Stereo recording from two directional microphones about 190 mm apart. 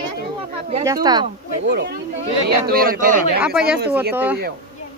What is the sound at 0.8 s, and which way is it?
Speech, 20° right (ahead or behind).